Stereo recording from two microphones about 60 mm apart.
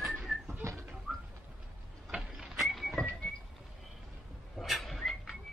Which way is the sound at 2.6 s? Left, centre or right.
Centre.